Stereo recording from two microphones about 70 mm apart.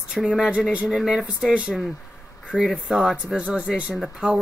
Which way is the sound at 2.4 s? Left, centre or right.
Centre.